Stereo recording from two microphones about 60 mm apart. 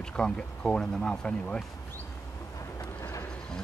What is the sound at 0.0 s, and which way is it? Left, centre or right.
Speech, centre.